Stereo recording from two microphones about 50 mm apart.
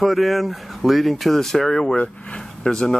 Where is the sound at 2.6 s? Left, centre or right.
Centre.